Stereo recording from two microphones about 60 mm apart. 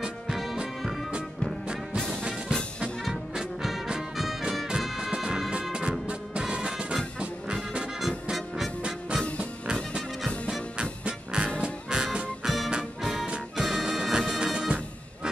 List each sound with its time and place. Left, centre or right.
0.0 s music: centre
2.0 s music: centre
2.2 s music: centre
3.0 s brass instrument: centre
4.2 s music: centre
8.3 s music: centre
9.1 s music: centre
10.5 s music: centre